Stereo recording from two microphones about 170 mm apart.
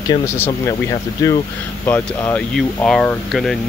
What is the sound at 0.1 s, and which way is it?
Speech, 15° left (ahead or behind).